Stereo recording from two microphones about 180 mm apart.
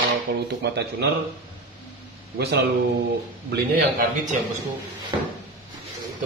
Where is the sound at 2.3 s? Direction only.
65° right (ahead or behind).